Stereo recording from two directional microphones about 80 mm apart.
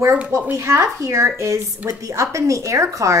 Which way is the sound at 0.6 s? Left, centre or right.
Right.